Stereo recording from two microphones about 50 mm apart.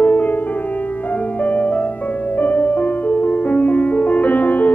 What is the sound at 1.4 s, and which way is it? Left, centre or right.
Music, left.